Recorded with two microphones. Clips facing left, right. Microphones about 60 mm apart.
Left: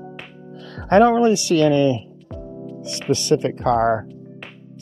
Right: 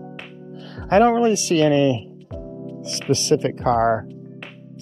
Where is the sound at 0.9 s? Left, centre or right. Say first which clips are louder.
Left 2 dB; left.